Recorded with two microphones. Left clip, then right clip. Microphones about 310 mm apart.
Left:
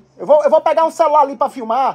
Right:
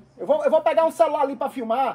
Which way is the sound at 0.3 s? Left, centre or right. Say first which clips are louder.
Left 8 dB; left.